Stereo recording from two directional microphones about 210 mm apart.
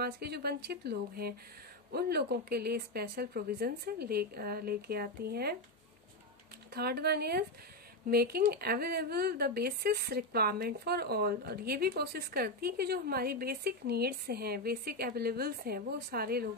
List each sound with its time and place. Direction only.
0.0 s speech: 50° right (ahead or behind)
6.7 s speech: 50° right (ahead or behind)